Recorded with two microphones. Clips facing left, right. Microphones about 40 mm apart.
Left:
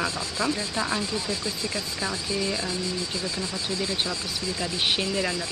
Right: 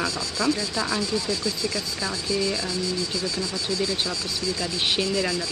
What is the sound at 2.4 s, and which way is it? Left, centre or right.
Speech, centre.